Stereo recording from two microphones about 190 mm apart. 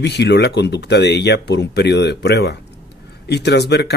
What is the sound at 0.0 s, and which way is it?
Speech, 65° left (ahead or behind).